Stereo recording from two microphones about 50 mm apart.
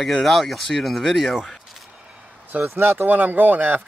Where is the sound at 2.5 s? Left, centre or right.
Right.